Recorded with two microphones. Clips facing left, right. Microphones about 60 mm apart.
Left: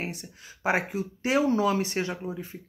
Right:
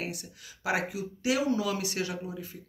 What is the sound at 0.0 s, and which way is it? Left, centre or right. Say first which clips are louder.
Speech: left 2 dB; left.